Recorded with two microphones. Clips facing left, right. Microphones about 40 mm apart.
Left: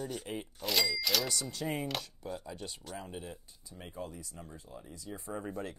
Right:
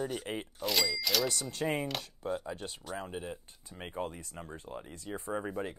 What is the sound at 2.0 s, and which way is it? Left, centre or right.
Speech, centre.